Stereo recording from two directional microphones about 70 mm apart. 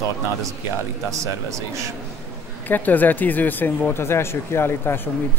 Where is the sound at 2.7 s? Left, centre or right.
Left.